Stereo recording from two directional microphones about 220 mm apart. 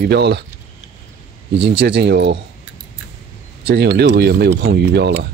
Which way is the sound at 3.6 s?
50° right (ahead or behind).